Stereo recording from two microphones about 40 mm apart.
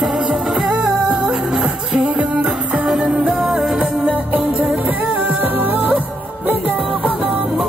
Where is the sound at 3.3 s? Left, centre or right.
Right.